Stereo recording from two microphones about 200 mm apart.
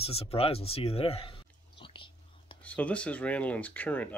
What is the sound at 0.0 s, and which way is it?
Speech, 30° left (ahead or behind).